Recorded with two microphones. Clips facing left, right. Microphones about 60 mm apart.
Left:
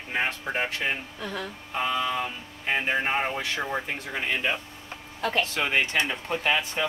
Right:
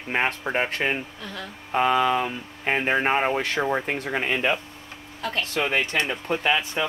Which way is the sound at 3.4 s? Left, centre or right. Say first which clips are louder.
Right 5 dB; right.